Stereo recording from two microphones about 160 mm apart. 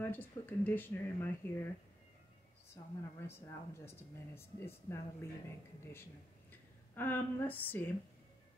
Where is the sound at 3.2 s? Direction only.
15° left (ahead or behind).